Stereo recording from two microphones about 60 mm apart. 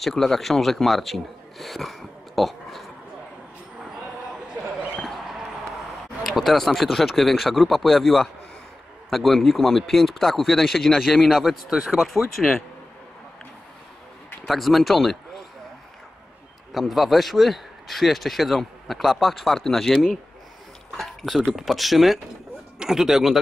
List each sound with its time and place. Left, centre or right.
0.0 s speech: centre
6.2 s speech: centre
14.4 s speech: centre
16.7 s a man's voice: centre